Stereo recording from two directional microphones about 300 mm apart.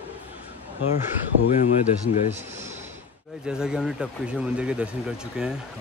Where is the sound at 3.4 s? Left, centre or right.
Centre.